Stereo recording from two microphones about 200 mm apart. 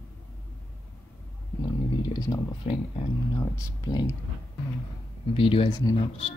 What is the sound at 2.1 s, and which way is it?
Speech, 20° left (ahead or behind).